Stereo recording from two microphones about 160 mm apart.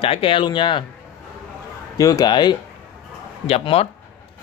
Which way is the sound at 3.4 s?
40° left (ahead or behind).